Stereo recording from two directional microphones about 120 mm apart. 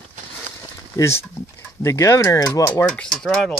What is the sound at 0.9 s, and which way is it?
Speech, 30° left (ahead or behind).